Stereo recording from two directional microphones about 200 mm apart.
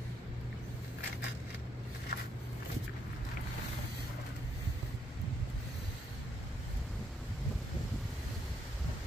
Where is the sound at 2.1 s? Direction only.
45° left (ahead or behind).